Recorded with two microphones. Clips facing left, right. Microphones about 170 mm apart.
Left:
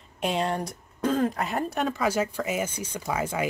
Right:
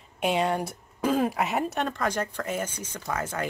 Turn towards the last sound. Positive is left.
turn(degrees=10)  # may be behind; listen again after turning